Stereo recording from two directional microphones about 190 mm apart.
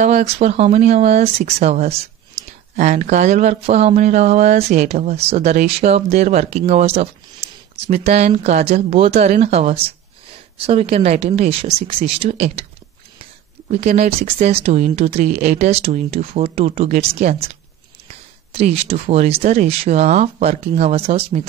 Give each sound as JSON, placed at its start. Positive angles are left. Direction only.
{"t": 0.0, "sound": "speech", "side_deg": -35}
{"t": 18.5, "sound": "speech", "side_deg": -30}